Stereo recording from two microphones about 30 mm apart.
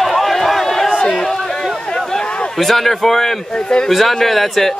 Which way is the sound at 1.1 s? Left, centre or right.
Centre.